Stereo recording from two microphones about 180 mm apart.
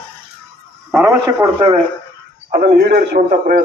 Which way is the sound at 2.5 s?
55° right (ahead or behind).